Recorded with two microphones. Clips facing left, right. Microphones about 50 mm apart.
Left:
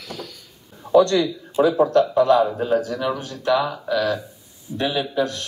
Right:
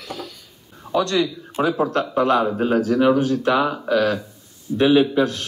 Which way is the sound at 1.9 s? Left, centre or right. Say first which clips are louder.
Left 3 dB; right.